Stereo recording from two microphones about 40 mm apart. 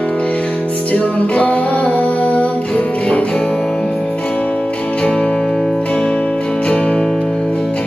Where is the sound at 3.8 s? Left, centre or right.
Left; by 5.8 s centre.